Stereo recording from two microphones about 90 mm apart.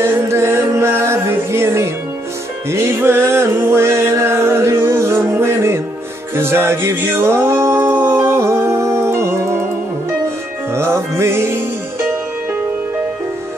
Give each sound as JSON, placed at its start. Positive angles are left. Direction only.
{"t": 0.0, "sound": "music", "side_deg": -30}
{"t": 6.3, "sound": "a sound", "side_deg": -25}
{"t": 10.7, "sound": "music", "side_deg": -30}